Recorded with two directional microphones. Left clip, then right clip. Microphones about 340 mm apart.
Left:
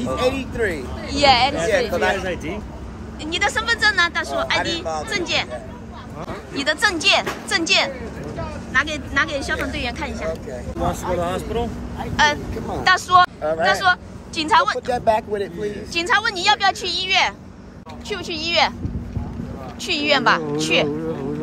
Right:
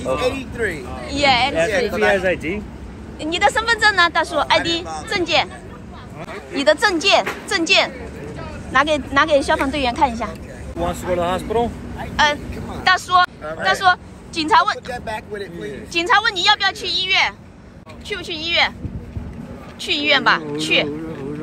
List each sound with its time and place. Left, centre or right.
0.0 s speech: left
1.1 s speech: centre
1.7 s speech: left
2.1 s speech: centre
3.2 s speech: centre
6.5 s speech: centre
12.2 s speech: centre
14.9 s speech: left
15.9 s a woman's voice: centre
19.8 s a woman's voice: centre